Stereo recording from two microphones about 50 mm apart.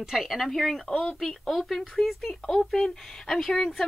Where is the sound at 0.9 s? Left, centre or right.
Centre.